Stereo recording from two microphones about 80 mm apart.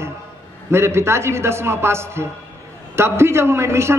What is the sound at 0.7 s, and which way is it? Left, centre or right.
A man's voice, right.